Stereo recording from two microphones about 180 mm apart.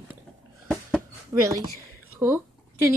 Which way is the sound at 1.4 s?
15° right (ahead or behind).